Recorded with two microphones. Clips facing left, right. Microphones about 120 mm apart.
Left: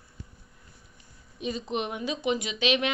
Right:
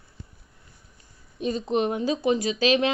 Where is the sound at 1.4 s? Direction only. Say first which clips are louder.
Right 6 dB; 40° right (ahead or behind).